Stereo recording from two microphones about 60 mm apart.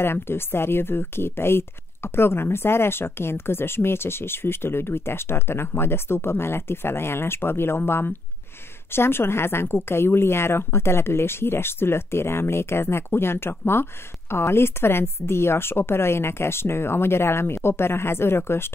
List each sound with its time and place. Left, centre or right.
0.0 s a woman's voice: left